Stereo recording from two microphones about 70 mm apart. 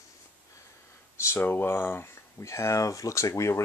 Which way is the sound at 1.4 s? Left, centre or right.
Left.